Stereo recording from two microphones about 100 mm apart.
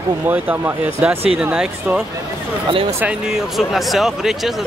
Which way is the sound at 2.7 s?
65° right (ahead or behind).